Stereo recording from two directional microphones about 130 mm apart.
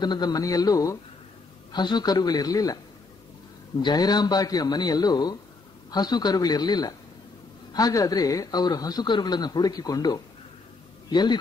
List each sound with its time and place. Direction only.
0.0 s a man's voice: 35° left (ahead or behind)
3.8 s a man's voice: 30° left (ahead or behind)